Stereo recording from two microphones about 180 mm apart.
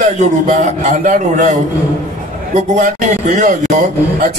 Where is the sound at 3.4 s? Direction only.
45° right (ahead or behind).